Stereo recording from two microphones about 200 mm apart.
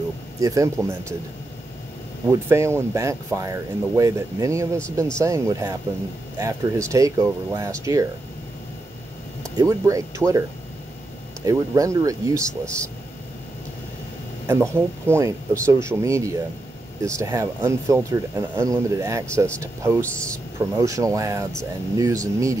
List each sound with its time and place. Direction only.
0.4 s speech: 15° right (ahead or behind)
2.4 s speech: 15° right (ahead or behind)
9.4 s speech: 15° right (ahead or behind)
11.4 s speech: 15° right (ahead or behind)
12.6 s speech: 5° left (ahead or behind)
14.5 s speech: 15° right (ahead or behind)
20.0 s speech: 5° left (ahead or behind)
20.5 s speech: 15° right (ahead or behind)